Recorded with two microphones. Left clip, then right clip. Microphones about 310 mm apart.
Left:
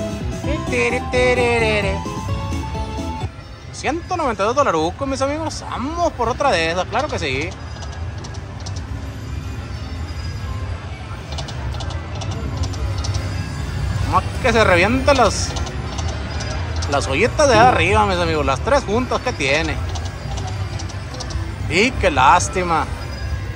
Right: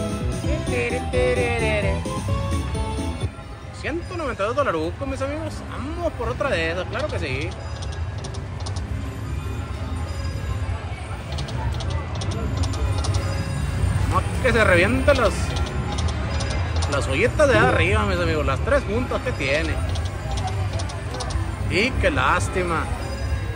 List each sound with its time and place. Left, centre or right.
0.7 s music: centre
3.8 s speech: centre
14.1 s speech: centre
16.3 s music: centre
16.9 s speech: centre
21.6 s speech: centre